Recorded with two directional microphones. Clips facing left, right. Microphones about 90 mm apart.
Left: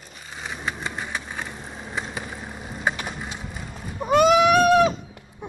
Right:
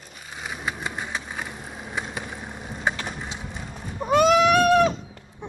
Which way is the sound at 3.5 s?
5° left (ahead or behind).